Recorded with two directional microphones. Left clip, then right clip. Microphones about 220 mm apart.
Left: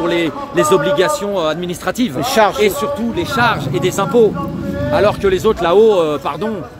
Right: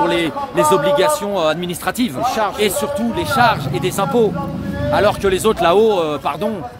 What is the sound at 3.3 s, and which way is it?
Speech, 5° left (ahead or behind).